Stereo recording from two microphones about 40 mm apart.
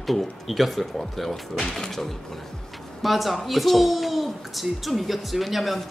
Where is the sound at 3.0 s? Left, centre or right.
Centre.